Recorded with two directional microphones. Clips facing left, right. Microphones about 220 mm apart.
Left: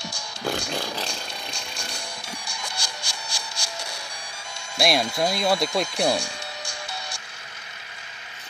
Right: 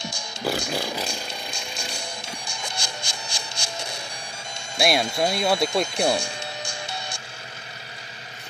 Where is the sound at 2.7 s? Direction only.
25° right (ahead or behind).